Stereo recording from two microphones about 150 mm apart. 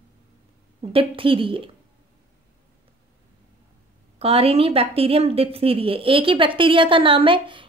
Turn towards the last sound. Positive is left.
turn(degrees=-35)  # may be behind; listen again after turning